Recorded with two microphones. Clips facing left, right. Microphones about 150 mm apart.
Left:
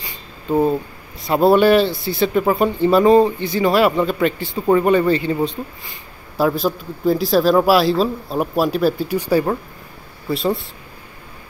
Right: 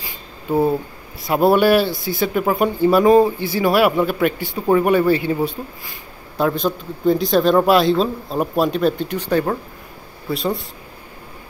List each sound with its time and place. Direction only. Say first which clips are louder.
0.5 s speech: left 1 dB; 10° right (ahead or behind)